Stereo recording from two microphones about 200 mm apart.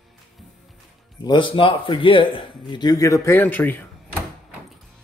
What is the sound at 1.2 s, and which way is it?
A man's voice, 25° left (ahead or behind).